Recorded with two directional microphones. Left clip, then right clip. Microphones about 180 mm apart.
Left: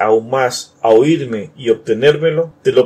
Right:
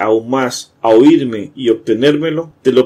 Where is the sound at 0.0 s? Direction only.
45° right (ahead or behind).